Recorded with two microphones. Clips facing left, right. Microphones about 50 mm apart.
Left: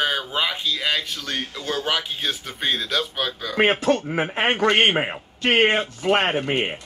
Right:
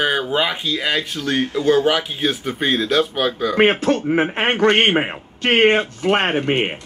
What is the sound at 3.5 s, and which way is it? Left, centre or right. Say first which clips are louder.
Speech: right 3 dB; right.